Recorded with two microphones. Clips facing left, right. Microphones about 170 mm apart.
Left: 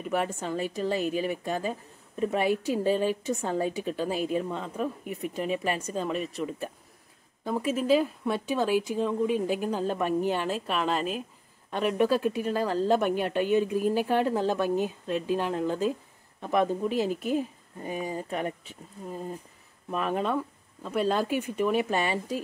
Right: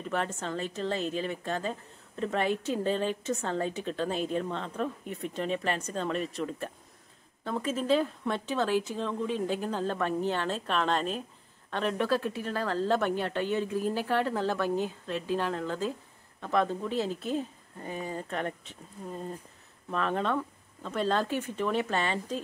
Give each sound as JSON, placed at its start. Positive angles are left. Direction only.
{"t": 0.0, "sound": "a woman's voice", "side_deg": 10}